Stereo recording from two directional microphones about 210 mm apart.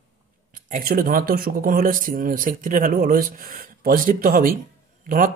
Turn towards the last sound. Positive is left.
turn(degrees=-40)  # may be behind; listen again after turning